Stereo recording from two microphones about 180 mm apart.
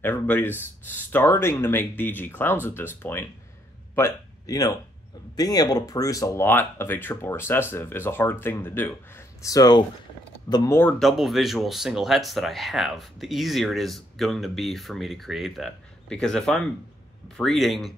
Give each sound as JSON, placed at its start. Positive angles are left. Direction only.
{"t": 0.0, "sound": "speech", "side_deg": 10}
{"t": 11.0, "sound": "speech", "side_deg": 0}